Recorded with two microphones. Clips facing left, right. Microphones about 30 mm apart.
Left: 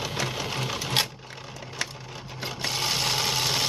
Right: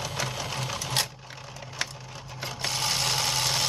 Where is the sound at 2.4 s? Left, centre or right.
Centre.